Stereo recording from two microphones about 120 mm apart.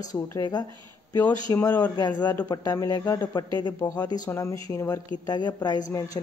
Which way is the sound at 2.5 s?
30° left (ahead or behind).